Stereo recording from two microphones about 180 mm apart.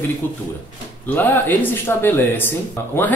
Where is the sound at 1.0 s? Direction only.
10° left (ahead or behind).